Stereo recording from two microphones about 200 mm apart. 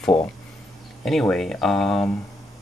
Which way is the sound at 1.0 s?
Centre (ahead or behind).